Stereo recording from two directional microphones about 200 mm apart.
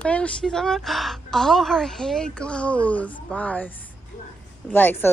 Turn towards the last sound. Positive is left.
turn(degrees=10)  # may be behind; listen again after turning